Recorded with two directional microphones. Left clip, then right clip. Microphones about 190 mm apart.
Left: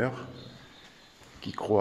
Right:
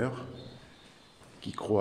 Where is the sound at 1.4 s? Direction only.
Centre (ahead or behind).